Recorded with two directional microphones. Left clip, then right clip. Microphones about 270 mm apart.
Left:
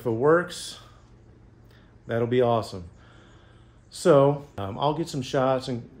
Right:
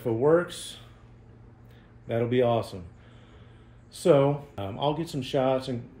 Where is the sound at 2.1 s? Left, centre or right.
Centre.